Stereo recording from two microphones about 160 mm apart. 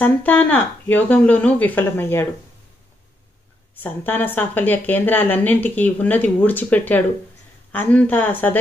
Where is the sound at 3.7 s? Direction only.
10° left (ahead or behind).